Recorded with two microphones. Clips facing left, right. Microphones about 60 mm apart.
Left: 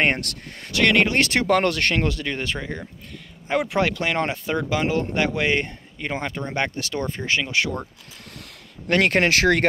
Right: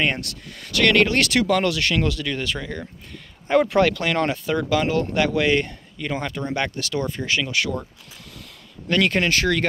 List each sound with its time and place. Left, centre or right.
0.0 s speech: left
0.6 s speech: left
1.4 s speech: left
3.4 s speech: centre; by 7.8 s left
8.8 s speech: left